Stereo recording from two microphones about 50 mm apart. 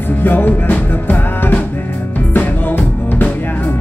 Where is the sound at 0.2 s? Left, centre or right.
Left.